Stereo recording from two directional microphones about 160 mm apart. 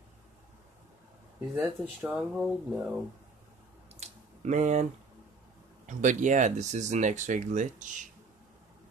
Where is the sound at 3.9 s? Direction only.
45° right (ahead or behind).